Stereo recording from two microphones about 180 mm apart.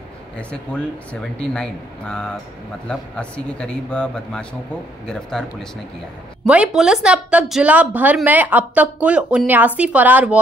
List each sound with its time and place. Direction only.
1.4 s a man's voice: 5° left (ahead or behind)